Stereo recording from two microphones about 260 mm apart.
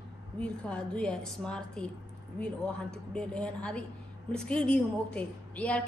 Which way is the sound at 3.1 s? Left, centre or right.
Centre.